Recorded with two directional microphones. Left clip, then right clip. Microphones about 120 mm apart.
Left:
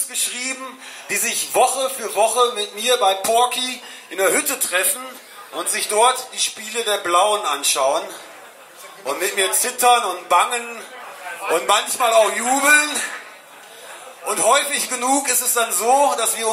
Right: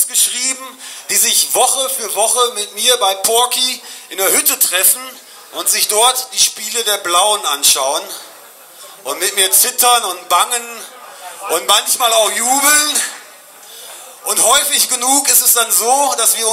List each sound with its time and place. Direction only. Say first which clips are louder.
1.0 s speech: right 7 dB; 25° right (ahead or behind)
14.2 s speech: right 3 dB; 25° right (ahead or behind)